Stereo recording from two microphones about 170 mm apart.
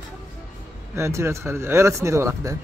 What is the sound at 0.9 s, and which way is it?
Speech, 15° right (ahead or behind).